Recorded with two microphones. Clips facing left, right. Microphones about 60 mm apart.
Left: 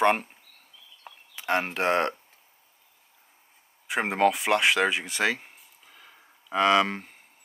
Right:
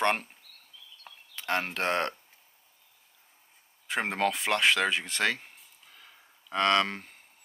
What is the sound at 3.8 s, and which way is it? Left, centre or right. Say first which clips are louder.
Speech: left 5 dB; centre.